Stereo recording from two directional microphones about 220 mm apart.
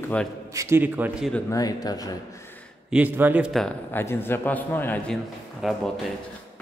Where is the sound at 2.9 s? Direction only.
10° right (ahead or behind).